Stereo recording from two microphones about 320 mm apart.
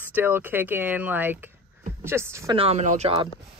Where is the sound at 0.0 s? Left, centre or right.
Centre.